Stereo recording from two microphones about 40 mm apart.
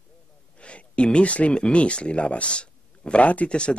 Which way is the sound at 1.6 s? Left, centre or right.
Left.